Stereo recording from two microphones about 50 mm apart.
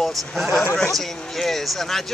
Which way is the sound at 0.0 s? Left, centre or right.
Centre.